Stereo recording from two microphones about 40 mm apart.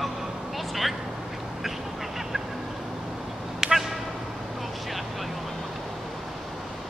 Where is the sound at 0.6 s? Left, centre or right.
Centre.